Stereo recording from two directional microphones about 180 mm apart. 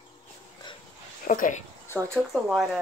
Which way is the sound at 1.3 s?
45° left (ahead or behind).